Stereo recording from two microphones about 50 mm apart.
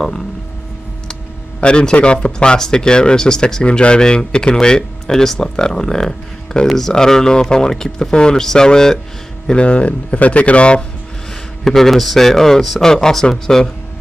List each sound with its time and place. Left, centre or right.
1.6 s speech: centre
11.6 s speech: centre